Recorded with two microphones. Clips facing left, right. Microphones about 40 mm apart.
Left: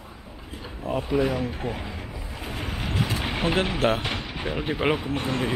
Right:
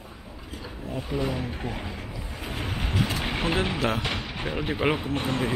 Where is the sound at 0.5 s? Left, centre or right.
Left.